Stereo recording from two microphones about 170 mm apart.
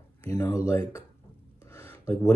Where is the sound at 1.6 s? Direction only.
15° left (ahead or behind).